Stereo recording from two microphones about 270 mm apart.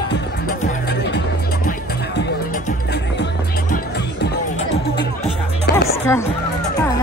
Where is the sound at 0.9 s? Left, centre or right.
Left.